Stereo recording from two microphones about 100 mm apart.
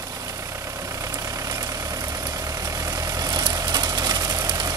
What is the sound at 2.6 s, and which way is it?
Vehicle, 35° right (ahead or behind).